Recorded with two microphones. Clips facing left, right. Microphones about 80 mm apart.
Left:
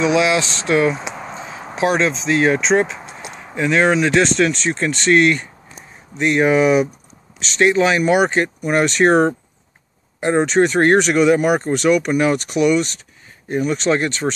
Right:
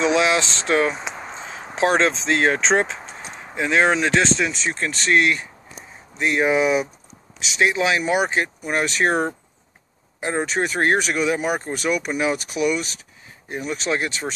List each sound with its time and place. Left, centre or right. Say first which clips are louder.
0.0 s speech: left 3 dB; right
0.9 s a sound: left 3 dB; centre
1.3 s a sound: left 3 dB; right
1.8 s speech: left 1 dB; right
3.5 s speech: left 3 dB; right
4.4 s speech: left 6 dB; centre